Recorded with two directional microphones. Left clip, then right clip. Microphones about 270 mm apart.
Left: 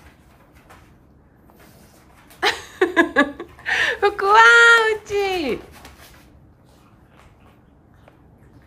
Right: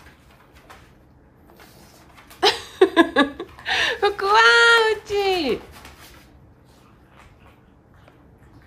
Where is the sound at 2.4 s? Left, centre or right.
Centre.